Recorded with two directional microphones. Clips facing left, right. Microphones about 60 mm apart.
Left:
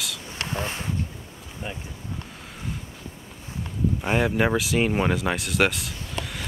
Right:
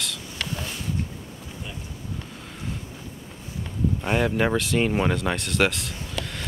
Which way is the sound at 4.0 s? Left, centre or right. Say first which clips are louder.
Left 1 dB; centre.